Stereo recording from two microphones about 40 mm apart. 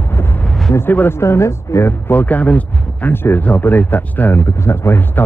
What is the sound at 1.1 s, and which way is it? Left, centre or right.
A woman's voice, left.